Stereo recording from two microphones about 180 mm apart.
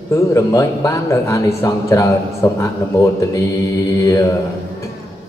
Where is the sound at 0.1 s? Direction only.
15° left (ahead or behind).